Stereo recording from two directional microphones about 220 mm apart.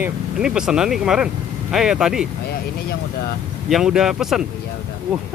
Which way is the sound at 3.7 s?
Centre (ahead or behind).